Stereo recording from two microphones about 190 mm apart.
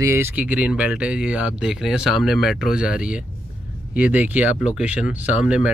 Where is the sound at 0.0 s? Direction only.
15° right (ahead or behind).